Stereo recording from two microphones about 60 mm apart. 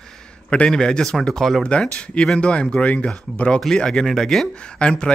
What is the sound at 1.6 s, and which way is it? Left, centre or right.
Speech, centre.